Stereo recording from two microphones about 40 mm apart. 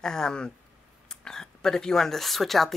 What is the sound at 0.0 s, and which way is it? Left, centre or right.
A woman's voice, centre.